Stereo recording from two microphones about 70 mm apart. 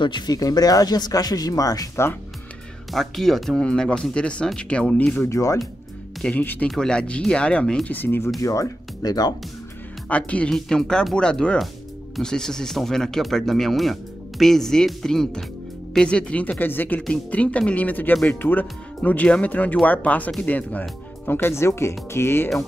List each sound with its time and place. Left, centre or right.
0.0 s speech: left
2.9 s speech: centre
5.2 s speech: left
6.2 s speech: centre
7.8 s speech: left
8.4 s speech: left
10.0 s speech: centre
10.5 s speech: centre
21.3 s speech: left